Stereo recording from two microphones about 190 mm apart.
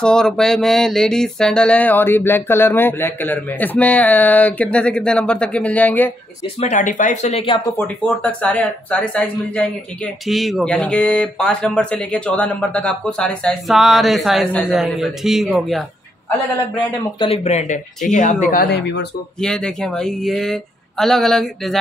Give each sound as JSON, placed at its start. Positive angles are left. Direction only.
{"t": 0.0, "sound": "a sound", "side_deg": 5}
{"t": 6.6, "sound": "speech", "side_deg": 40}
{"t": 7.7, "sound": "a sound", "side_deg": 10}
{"t": 10.2, "sound": "speech", "side_deg": 0}
{"t": 17.2, "sound": "speech", "side_deg": 30}
{"t": 19.4, "sound": "speech", "side_deg": 5}